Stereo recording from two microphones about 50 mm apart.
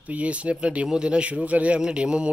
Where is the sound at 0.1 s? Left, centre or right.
Right.